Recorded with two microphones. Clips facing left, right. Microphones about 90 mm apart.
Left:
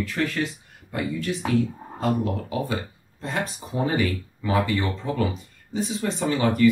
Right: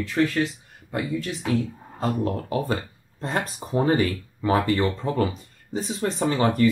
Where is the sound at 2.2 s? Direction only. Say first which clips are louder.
Right 2 dB; 40° right (ahead or behind).